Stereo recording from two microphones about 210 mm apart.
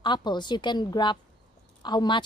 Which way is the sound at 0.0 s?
20° left (ahead or behind).